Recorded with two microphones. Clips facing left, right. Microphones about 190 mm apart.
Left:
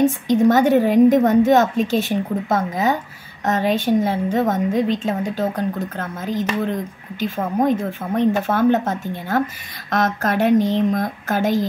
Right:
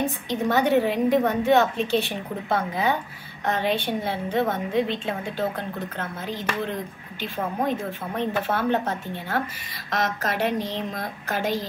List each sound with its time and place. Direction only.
0.0 s a woman's voice: 45° left (ahead or behind)